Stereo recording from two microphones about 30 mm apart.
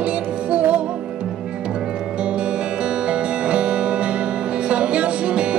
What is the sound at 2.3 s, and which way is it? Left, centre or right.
Music, right.